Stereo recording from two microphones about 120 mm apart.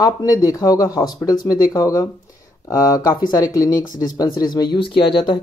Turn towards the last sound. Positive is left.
turn(degrees=45)  # may be behind; listen again after turning